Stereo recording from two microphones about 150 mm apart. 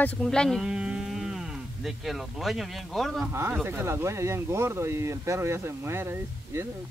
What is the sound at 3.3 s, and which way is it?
Speech, 15° right (ahead or behind).